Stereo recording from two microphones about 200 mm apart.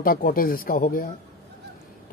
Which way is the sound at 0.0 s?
45° left (ahead or behind).